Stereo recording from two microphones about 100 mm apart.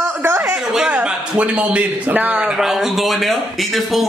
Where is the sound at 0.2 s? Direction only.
20° right (ahead or behind).